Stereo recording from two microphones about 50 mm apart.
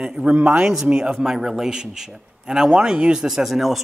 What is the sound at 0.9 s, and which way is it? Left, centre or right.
Speech, centre.